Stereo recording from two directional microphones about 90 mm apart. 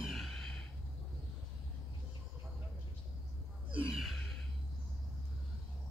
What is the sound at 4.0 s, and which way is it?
Gasp, centre (ahead or behind).